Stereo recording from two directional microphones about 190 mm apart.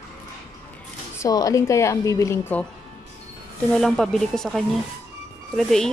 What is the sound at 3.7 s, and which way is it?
Speech, centre (ahead or behind).